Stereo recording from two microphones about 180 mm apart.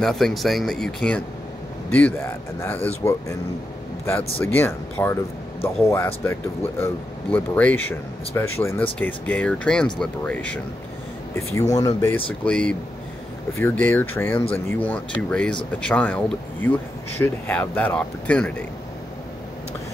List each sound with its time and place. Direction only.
0.0 s speech: centre (ahead or behind)
4.5 s speech: 10° left (ahead or behind)
11.3 s speech: 20° left (ahead or behind)
12.3 s speech: 5° left (ahead or behind)